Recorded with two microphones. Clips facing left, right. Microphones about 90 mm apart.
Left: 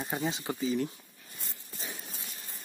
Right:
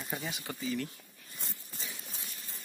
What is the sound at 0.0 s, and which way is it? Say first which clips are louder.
Speech: left 6 dB; 30° left (ahead or behind).